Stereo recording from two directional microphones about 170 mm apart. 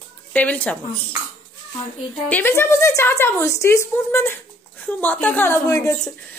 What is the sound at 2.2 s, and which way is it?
A woman's voice, 10° left (ahead or behind).